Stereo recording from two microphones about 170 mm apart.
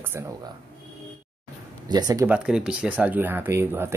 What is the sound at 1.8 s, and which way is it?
Speech, 25° right (ahead or behind).